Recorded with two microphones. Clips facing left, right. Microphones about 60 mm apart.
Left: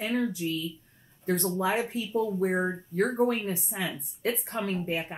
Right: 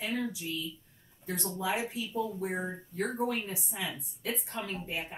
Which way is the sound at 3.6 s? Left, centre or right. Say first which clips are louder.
Left 4 dB; left.